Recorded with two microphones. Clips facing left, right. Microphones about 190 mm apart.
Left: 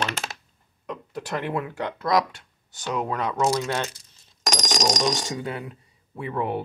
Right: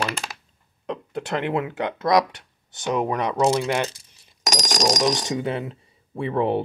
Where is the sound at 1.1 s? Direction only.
25° right (ahead or behind).